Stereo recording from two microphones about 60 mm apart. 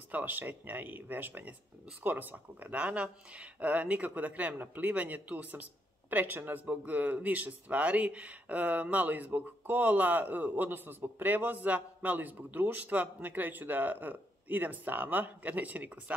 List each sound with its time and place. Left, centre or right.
0.1 s speech: right